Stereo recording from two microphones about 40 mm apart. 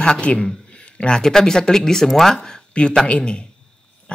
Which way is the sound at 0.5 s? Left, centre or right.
Left.